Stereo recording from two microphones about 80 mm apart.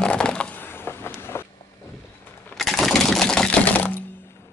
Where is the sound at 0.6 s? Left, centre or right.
Left.